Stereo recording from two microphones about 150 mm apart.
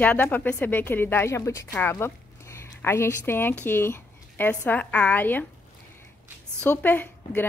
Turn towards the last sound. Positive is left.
turn(degrees=10)  # may be behind; listen again after turning